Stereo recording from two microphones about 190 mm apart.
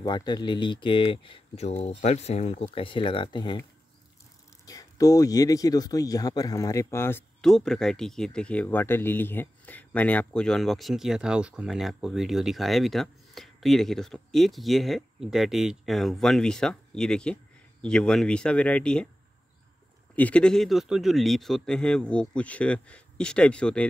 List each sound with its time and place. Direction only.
0.0 s speech: 20° left (ahead or behind)
4.6 s speech: 20° left (ahead or behind)
20.2 s speech: 5° left (ahead or behind)